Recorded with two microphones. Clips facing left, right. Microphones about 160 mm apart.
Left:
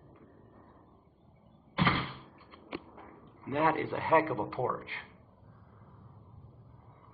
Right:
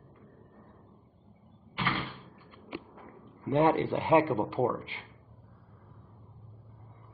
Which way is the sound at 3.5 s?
25° right (ahead or behind).